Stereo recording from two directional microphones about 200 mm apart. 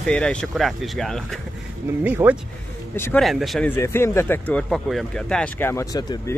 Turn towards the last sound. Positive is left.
turn(degrees=20)  # may be behind; listen again after turning